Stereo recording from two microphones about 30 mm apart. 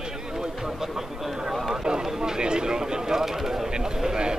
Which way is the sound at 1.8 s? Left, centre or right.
Right.